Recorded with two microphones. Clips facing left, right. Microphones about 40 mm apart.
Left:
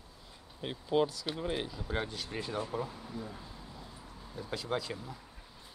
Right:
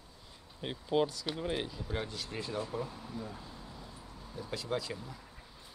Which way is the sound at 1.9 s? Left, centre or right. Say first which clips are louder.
Left 2 dB; centre.